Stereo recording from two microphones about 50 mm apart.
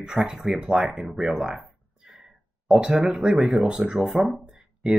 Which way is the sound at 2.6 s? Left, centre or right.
Centre.